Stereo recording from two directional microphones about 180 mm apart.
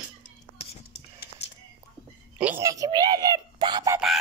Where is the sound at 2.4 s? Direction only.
10° right (ahead or behind).